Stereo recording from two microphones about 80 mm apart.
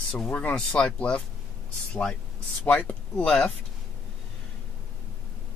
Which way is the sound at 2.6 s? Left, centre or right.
Centre.